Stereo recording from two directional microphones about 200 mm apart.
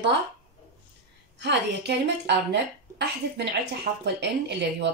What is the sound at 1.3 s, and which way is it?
Speech, 60° right (ahead or behind).